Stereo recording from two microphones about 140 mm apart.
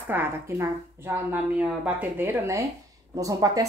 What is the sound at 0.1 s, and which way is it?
A woman's voice, 15° right (ahead or behind).